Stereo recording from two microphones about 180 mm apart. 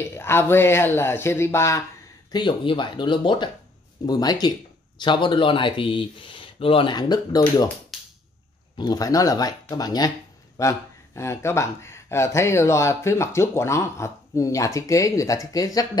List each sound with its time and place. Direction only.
0.1 s speech: 15° left (ahead or behind)
2.3 s speech: 25° left (ahead or behind)
8.7 s speech: 20° left (ahead or behind)